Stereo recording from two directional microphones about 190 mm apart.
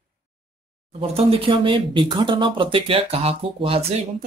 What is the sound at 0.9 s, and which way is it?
Speech, 30° right (ahead or behind).